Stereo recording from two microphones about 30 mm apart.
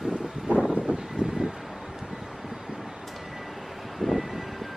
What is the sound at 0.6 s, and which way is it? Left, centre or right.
Vehicle, centre.